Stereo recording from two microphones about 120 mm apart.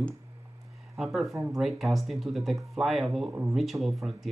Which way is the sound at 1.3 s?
25° right (ahead or behind).